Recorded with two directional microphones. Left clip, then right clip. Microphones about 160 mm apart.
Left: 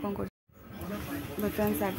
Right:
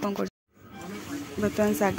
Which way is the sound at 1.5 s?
30° right (ahead or behind).